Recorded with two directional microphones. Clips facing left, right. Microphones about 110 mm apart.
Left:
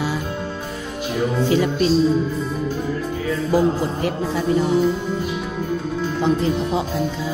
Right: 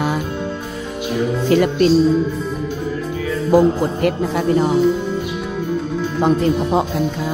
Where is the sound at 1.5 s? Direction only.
60° right (ahead or behind).